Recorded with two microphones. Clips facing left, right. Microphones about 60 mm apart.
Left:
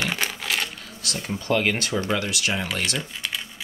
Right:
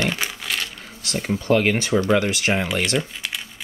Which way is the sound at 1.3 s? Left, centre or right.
Right.